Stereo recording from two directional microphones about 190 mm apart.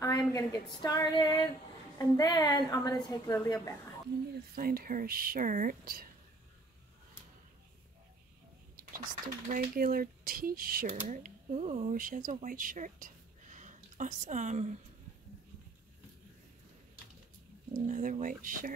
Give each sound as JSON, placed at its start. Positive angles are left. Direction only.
{"t": 0.0, "sound": "a woman's voice", "side_deg": 20}
{"t": 4.6, "sound": "speech", "side_deg": -50}
{"t": 9.5, "sound": "a woman's voice", "side_deg": -50}
{"t": 17.7, "sound": "speech", "side_deg": -40}